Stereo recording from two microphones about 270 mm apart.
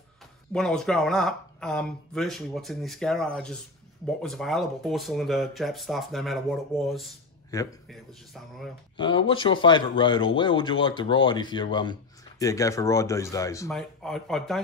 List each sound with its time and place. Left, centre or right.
0.5 s speech: centre
7.5 s speech: centre
8.9 s speech: centre